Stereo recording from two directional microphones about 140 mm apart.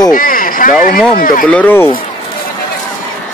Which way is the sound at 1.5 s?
10° left (ahead or behind).